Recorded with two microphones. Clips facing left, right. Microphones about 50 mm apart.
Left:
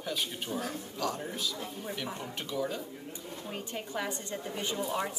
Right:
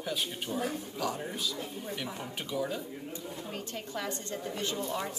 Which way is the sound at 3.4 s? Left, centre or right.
Centre.